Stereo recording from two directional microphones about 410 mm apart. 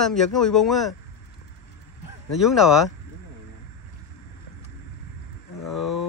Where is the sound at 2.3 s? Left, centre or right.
Centre.